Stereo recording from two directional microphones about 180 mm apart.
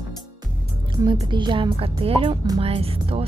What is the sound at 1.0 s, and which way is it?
A woman's voice, 25° right (ahead or behind).